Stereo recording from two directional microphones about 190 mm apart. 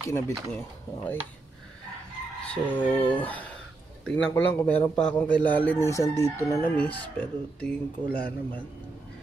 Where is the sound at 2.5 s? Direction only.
10° left (ahead or behind).